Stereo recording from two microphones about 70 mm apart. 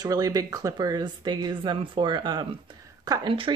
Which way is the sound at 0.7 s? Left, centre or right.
Right.